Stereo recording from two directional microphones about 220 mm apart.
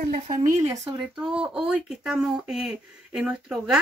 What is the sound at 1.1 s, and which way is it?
Speech, 5° right (ahead or behind).